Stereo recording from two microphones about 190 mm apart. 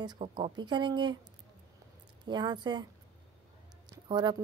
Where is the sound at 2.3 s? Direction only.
25° right (ahead or behind).